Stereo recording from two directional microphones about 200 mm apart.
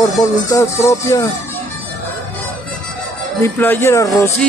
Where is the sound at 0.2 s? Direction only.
15° left (ahead or behind).